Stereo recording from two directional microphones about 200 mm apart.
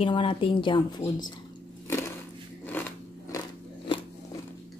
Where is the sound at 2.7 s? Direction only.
10° left (ahead or behind).